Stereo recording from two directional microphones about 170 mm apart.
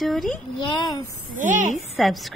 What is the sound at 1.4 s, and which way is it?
Speech, 50° right (ahead or behind).